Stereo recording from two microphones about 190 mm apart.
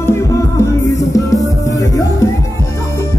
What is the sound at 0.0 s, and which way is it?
Music, 15° left (ahead or behind).